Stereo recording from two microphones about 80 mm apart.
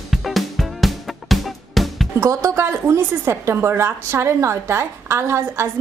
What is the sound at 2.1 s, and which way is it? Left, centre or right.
A woman's voice, right.